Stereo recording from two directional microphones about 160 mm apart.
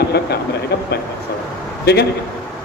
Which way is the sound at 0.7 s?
90° left.